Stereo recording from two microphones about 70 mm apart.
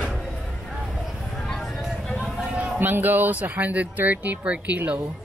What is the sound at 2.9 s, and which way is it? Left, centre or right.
Speech, right.